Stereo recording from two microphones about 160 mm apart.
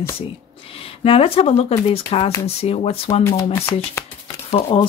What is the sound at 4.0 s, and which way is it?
Shuffling cards, 15° left (ahead or behind).